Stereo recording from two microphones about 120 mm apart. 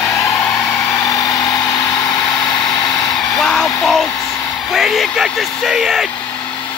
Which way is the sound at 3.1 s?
5° left (ahead or behind).